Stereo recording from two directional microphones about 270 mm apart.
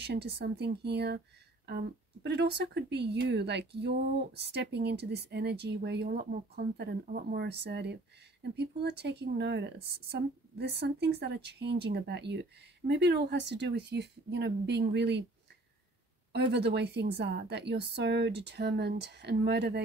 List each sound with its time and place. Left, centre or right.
0.0 s speech: right
2.2 s speech: right
16.3 s speech: right